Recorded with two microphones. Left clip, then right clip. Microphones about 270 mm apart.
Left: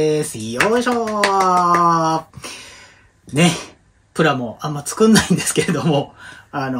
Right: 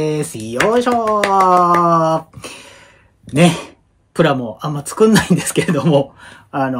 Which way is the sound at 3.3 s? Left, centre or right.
Centre.